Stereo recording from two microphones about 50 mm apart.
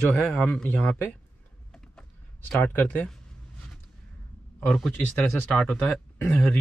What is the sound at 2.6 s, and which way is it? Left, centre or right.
Speech, left.